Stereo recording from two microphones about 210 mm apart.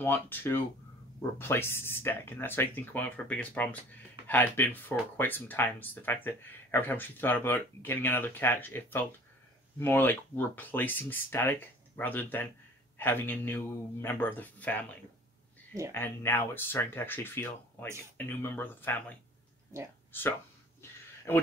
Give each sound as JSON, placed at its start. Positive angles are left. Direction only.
{"t": 0.0, "sound": "speech", "side_deg": 10}
{"t": 15.9, "sound": "speech", "side_deg": 10}
{"t": 19.7, "sound": "speech", "side_deg": -15}
{"t": 20.1, "sound": "speech", "side_deg": 10}